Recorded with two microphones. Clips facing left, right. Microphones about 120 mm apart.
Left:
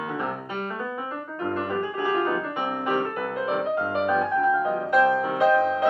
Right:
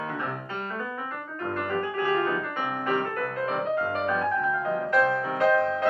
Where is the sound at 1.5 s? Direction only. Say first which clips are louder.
Left 1 dB; 25° left (ahead or behind).